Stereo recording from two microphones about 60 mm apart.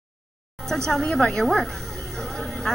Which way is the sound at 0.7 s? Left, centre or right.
Centre.